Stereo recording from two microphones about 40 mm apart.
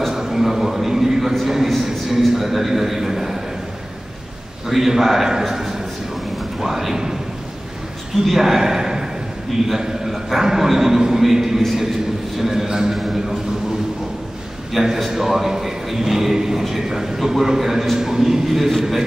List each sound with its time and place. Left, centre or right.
0.1 s a sound: centre
4.6 s a man's voice: centre
6.3 s vehicle: centre
8.3 s a man's voice: centre
12.9 s a sound: centre
14.7 s a man's voice: centre